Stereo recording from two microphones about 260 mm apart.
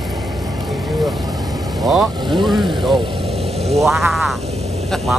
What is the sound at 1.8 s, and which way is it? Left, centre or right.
Speech, centre.